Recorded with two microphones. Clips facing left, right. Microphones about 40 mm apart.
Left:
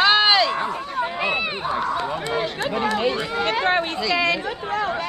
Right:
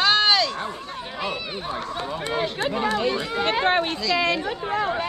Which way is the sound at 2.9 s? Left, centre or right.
Left.